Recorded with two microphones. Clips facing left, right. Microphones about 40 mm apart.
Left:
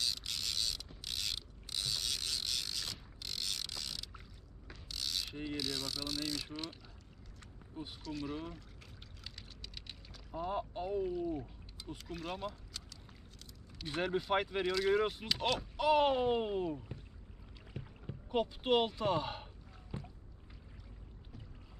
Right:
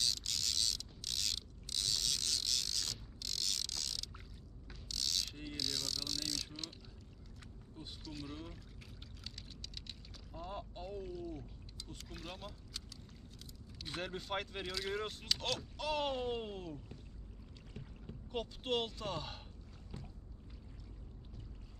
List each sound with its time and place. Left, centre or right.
0.0 s creak: centre
4.8 s mechanisms: centre
8.0 s speech: centre
9.2 s a sound: centre
12.0 s speech: centre
14.7 s speech: centre
17.7 s boat: centre